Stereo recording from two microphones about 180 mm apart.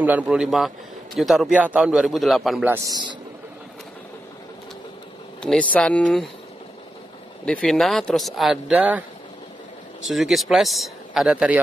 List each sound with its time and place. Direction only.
0.0 s a man's voice: 10° right (ahead or behind)
2.9 s speech: 25° right (ahead or behind)
5.4 s a man's voice: 5° left (ahead or behind)
7.4 s a man's voice: 5° left (ahead or behind)
10.0 s a man's voice: centre (ahead or behind)